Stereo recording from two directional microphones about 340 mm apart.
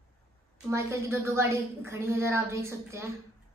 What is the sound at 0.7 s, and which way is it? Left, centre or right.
A woman's voice, centre.